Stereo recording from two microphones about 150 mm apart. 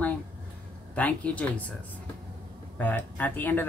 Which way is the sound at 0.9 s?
10° left (ahead or behind).